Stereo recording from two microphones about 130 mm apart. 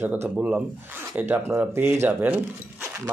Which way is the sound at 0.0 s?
15° right (ahead or behind).